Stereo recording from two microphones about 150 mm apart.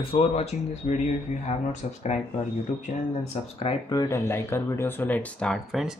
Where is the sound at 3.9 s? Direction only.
20° left (ahead or behind); by 6.0 s centre (ahead or behind).